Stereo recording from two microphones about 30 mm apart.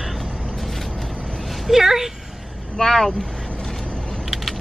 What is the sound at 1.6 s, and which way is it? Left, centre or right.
Speech, centre.